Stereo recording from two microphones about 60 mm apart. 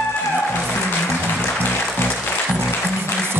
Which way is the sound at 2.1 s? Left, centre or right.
Centre.